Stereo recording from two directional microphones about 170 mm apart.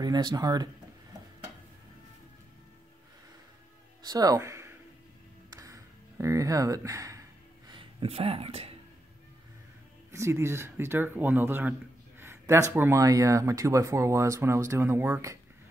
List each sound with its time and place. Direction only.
0.0 s speech: 25° right (ahead or behind)
4.0 s speech: 20° right (ahead or behind)
5.6 s a sound: 20° right (ahead or behind); by 8.7 s 35° right (ahead or behind)
10.1 s speech: 15° right (ahead or behind)